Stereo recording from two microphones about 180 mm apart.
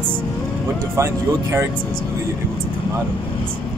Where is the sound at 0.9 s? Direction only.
15° right (ahead or behind).